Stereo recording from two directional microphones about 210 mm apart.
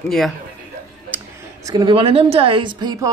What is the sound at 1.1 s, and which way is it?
Speech, 15° right (ahead or behind).